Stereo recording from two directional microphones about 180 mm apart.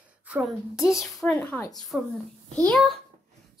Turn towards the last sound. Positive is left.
turn(degrees=0)  # may be behind; listen again after turning